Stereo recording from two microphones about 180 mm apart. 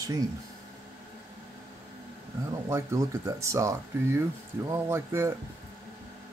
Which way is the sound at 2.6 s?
15° right (ahead or behind).